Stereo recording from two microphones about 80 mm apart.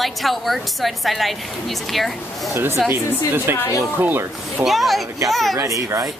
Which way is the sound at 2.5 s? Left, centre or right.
Right.